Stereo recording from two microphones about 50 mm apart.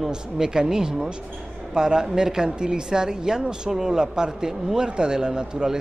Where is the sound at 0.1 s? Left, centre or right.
Centre.